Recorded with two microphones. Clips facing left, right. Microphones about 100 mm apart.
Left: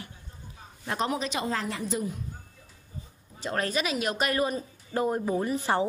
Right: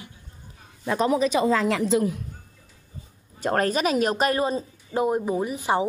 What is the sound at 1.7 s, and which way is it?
Speech, 90° right.